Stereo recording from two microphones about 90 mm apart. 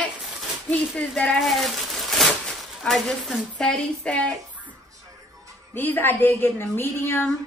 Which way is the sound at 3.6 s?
10° left (ahead or behind).